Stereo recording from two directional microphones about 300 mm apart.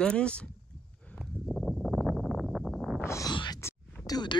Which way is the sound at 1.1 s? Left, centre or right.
Centre.